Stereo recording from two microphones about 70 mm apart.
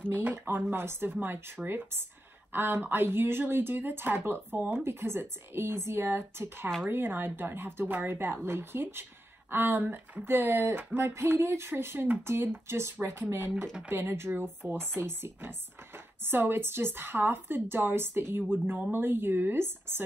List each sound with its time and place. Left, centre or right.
0.1 s speech: right